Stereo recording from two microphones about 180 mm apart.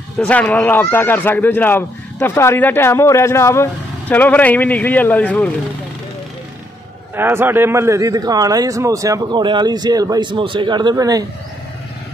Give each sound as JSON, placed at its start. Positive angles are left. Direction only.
{"t": 0.2, "sound": "speech", "side_deg": 5}
{"t": 7.2, "sound": "a man's voice", "side_deg": -10}